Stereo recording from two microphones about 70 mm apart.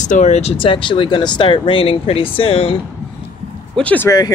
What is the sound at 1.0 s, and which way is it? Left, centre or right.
Speech, left.